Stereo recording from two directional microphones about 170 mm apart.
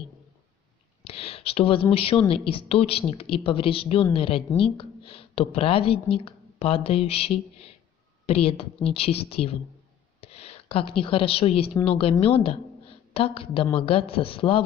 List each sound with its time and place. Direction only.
1.0 s a woman's voice: 35° left (ahead or behind)